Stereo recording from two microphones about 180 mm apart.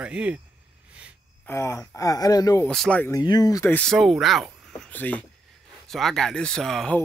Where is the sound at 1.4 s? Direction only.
15° left (ahead or behind).